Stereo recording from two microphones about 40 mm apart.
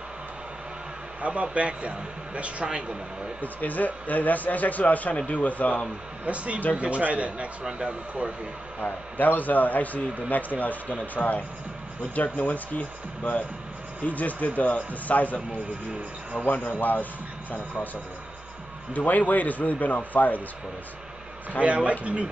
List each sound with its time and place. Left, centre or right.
1.2 s a man's voice: right
3.3 s a man's voice: left
6.2 s a man's voice: right
8.8 s a man's voice: left
18.9 s a man's voice: left
21.5 s a man's voice: right